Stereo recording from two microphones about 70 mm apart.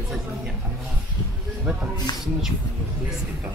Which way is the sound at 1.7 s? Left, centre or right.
Centre.